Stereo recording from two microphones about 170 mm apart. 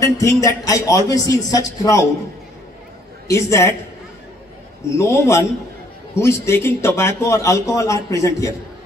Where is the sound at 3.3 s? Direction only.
15° left (ahead or behind).